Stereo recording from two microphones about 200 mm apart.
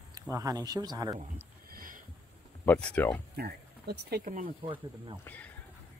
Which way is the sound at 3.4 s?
50° right (ahead or behind).